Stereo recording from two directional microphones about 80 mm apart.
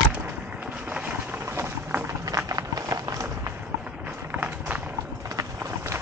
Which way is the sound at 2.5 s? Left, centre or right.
Right.